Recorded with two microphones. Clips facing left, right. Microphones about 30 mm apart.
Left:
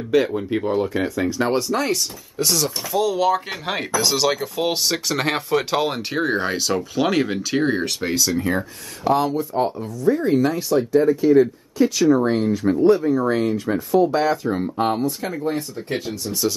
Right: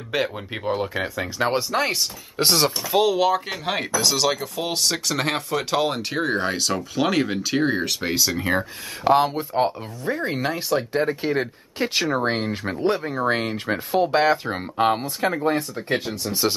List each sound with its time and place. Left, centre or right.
0.1 s speech: centre
2.3 s speech: right
3.2 s speech: centre
8.5 s speech: right
15.9 s speech: right